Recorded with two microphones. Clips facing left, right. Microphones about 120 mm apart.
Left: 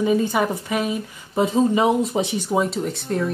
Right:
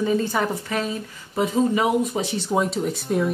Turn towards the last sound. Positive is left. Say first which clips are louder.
# right 1 dB
turn(degrees=0)  # may be behind; listen again after turning